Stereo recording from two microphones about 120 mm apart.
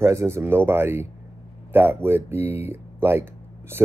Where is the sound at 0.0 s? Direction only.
25° right (ahead or behind).